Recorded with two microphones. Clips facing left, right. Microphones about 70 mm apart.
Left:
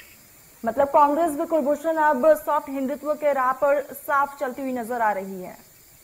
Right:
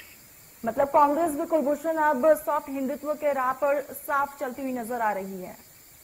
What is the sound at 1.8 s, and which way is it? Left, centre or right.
Speech, left.